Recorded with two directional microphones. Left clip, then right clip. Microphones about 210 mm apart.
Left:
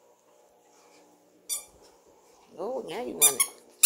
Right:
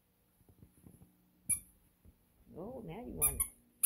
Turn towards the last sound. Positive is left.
turn(degrees=20)  # may be behind; listen again after turning